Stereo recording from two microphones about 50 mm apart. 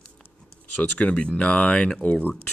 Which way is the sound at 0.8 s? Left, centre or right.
Left.